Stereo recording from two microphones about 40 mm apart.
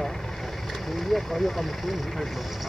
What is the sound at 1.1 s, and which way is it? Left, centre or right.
Speech, centre.